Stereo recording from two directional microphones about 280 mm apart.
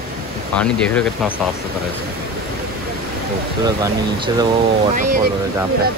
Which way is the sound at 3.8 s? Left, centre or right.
Centre.